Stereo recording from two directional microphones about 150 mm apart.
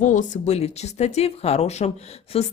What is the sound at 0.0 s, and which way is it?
A woman's voice, 55° left (ahead or behind).